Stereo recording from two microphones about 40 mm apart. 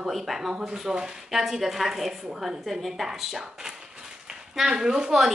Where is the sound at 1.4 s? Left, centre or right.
Centre.